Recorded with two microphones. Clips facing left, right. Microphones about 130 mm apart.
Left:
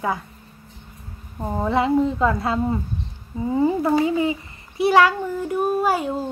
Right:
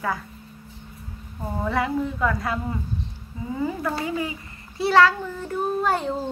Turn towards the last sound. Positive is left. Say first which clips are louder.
# left 3 dB
turn(degrees=10)  # may be behind; listen again after turning